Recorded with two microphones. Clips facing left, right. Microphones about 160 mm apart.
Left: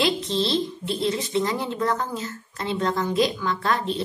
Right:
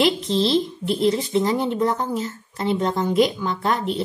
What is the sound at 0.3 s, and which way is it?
A woman's voice, 25° right (ahead or behind).